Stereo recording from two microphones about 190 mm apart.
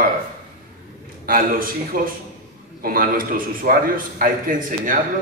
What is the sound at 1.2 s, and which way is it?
A man's voice, 50° right (ahead or behind).